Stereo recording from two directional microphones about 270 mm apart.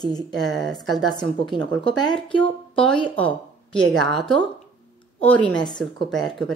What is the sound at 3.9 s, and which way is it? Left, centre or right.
Speech, centre.